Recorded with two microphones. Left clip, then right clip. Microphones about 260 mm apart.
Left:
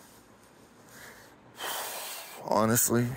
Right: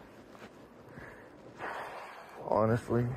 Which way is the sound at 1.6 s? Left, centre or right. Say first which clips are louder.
Left 4 dB; left.